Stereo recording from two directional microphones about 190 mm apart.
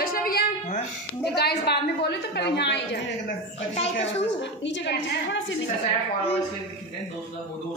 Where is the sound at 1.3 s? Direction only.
55° left (ahead or behind).